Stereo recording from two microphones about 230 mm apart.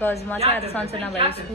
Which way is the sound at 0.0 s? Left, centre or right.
Centre.